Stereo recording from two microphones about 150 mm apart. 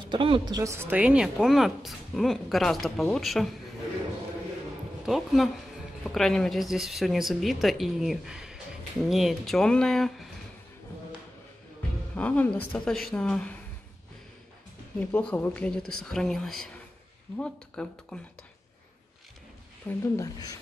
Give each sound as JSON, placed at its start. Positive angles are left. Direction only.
{"t": 0.0, "sound": "a woman's voice", "side_deg": -35}
{"t": 5.0, "sound": "a woman's voice", "side_deg": 0}
{"t": 12.2, "sound": "a woman's voice", "side_deg": 10}
{"t": 15.0, "sound": "a woman's voice", "side_deg": 10}
{"t": 19.9, "sound": "speech", "side_deg": 20}